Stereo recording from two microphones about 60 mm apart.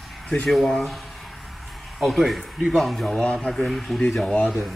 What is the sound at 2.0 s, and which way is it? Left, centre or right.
Speech, centre.